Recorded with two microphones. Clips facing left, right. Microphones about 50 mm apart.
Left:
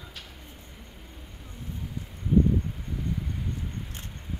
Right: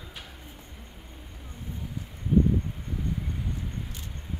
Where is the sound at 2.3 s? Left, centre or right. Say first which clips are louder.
Even; centre.